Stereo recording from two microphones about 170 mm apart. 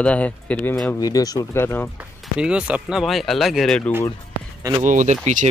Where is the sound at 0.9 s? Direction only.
20° left (ahead or behind).